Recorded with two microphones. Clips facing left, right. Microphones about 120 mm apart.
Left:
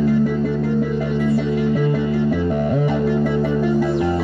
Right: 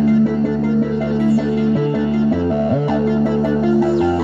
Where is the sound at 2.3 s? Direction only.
25° right (ahead or behind).